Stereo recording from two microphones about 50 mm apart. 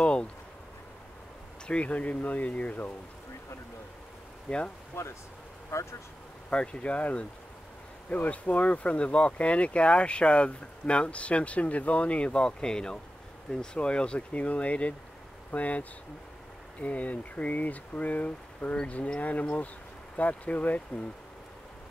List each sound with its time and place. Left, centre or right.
0.0 s a sound: left
1.7 s speech: left
4.5 s speech: left
5.0 s speech: left
6.5 s speech: left